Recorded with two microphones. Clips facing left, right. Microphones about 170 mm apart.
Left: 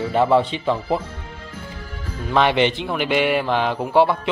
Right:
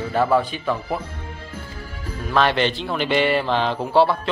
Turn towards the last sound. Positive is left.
turn(degrees=15)  # may be behind; listen again after turning